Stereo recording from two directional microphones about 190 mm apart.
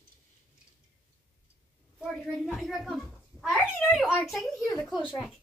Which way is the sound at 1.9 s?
Centre (ahead or behind).